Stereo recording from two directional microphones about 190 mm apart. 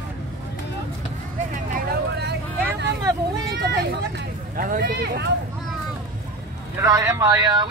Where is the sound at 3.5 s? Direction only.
60° right (ahead or behind).